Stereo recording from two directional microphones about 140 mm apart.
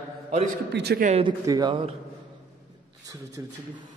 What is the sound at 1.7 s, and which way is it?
Speech, 40° right (ahead or behind).